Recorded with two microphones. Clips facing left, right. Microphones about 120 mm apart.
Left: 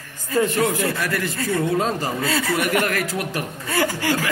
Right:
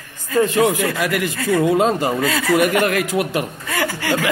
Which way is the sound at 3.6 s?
40° left (ahead or behind).